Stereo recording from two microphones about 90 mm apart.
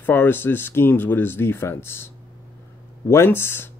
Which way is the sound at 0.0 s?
20° left (ahead or behind).